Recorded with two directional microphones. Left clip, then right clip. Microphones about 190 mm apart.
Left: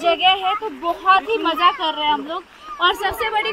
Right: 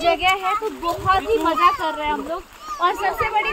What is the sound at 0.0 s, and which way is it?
Speech, 40° left (ahead or behind).